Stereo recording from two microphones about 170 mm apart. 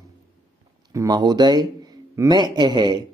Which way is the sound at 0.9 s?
25° right (ahead or behind).